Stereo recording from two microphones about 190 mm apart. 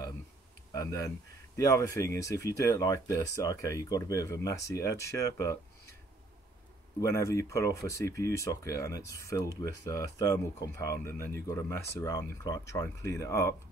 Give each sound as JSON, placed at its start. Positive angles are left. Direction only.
{"t": 0.7, "sound": "speech", "side_deg": 15}
{"t": 7.0, "sound": "speech", "side_deg": 15}